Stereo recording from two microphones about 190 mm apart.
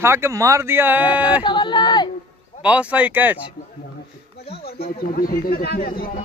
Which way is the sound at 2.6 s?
5° right (ahead or behind).